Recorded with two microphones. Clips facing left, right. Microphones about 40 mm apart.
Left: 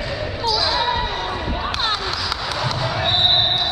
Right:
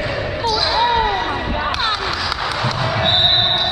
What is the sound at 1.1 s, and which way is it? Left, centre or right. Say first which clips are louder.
Basketball bounce: right 4 dB; right.